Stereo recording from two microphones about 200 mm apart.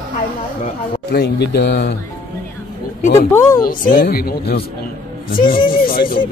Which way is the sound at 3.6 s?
45° left (ahead or behind).